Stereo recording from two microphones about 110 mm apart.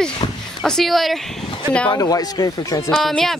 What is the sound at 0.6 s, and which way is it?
Speech, 5° left (ahead or behind).